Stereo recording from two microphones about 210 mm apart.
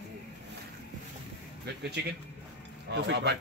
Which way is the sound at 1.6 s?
50° right (ahead or behind).